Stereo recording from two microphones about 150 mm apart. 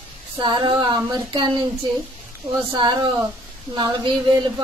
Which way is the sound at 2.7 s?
30° right (ahead or behind).